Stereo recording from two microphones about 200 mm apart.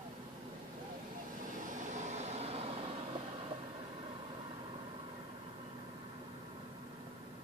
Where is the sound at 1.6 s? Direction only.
40° right (ahead or behind).